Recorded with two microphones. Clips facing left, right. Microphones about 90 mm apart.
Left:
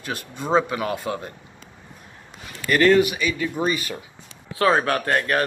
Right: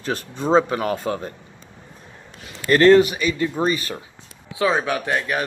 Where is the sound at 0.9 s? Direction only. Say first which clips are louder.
Right 2 dB; 15° left (ahead or behind).